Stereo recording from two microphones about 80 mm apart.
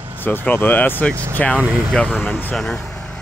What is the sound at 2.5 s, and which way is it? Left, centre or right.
Vehicle, centre.